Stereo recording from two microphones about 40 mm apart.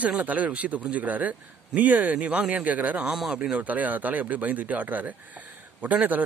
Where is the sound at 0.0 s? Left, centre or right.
Right.